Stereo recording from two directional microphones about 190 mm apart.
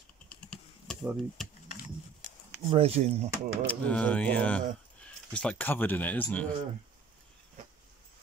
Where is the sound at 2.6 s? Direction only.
30° right (ahead or behind).